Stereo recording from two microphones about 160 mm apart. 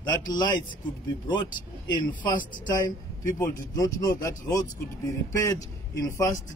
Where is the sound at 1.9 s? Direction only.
25° left (ahead or behind).